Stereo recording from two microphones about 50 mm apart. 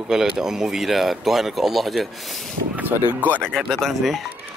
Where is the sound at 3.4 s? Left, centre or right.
Centre.